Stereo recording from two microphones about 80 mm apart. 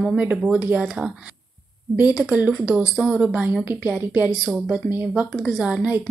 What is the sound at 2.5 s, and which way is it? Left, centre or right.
A woman's voice, centre.